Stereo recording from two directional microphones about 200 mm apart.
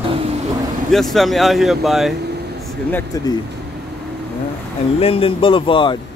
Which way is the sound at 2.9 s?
15° left (ahead or behind).